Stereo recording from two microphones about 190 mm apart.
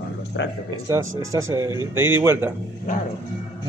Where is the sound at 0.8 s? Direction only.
15° right (ahead or behind).